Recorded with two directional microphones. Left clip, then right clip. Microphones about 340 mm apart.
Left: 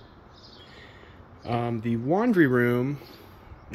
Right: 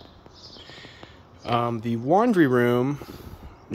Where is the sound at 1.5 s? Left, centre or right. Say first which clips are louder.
Right 4 dB; centre.